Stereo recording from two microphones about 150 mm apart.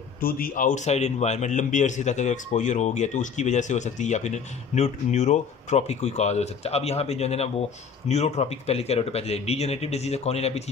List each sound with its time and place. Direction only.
0.2 s a man's voice: 70° left (ahead or behind); by 10.6 s 45° left (ahead or behind)